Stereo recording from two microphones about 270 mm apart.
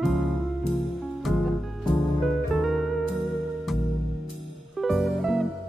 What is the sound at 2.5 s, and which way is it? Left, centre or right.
Music, centre.